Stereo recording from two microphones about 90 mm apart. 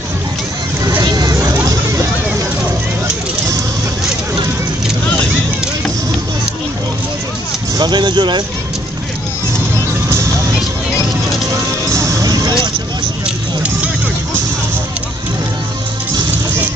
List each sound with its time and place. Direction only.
1.0 s vehicle: 45° right (ahead or behind)
7.7 s speech: 55° right (ahead or behind)
11.9 s music: 35° right (ahead or behind)